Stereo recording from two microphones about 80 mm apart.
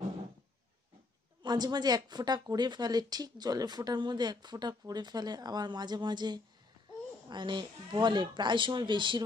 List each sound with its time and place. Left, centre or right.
1.4 s a woman's voice: right